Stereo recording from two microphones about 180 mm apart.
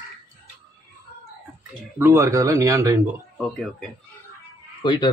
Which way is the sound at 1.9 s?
15° right (ahead or behind).